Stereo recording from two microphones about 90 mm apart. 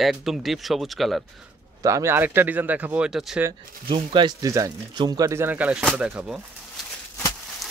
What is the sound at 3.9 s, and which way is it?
Speech, 65° right (ahead or behind).